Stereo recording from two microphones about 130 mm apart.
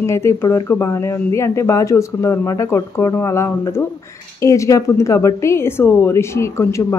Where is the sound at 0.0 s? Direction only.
20° left (ahead or behind).